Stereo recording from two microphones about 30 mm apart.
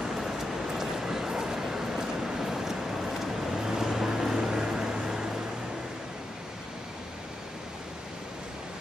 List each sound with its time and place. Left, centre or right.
0.0 s rain: centre
0.7 s a sound: centre
3.5 s vehicle: centre